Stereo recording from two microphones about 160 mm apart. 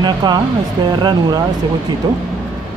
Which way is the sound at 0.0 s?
25° right (ahead or behind).